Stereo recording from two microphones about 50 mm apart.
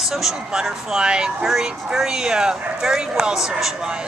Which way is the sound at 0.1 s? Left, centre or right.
Centre.